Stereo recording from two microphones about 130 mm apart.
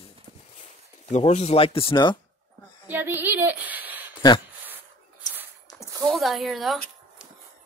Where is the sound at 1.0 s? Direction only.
55° left (ahead or behind); by 2.2 s 40° left (ahead or behind).